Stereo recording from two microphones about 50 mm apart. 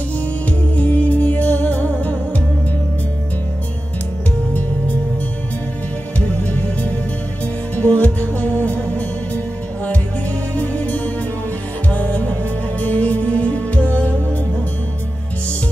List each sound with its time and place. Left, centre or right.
0.5 s music: left
6.1 s music: left
10.5 s music: left